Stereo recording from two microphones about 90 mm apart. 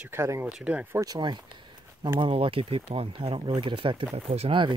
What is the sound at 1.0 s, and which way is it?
Speech, 50° right (ahead or behind).